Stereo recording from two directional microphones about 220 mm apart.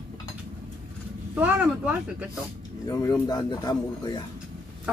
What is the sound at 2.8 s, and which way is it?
Speech, 15° left (ahead or behind).